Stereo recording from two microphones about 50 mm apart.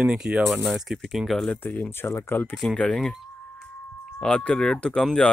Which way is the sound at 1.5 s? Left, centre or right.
Left.